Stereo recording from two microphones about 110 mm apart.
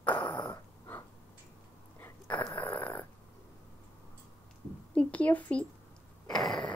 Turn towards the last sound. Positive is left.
turn(degrees=5)  # may be behind; listen again after turning